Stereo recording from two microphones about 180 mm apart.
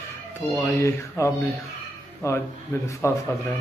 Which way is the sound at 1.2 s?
15° left (ahead or behind).